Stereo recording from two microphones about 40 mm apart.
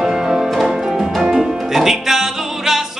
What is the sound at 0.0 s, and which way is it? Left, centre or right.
Music, centre.